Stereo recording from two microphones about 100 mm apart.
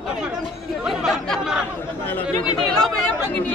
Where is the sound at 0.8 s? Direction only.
5° right (ahead or behind).